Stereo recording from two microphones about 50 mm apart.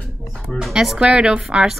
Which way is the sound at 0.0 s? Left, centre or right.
Centre.